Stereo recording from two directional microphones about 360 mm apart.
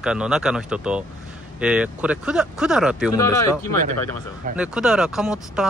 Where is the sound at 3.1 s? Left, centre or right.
Centre.